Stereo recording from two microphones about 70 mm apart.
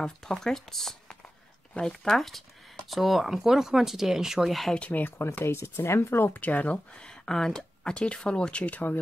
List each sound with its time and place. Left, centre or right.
0.0 s speech: centre
4.7 s speech: left
5.2 s speech: left
6.4 s speech: left